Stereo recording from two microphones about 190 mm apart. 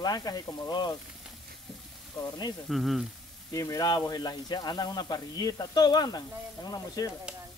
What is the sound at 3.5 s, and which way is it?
Speech, 15° left (ahead or behind).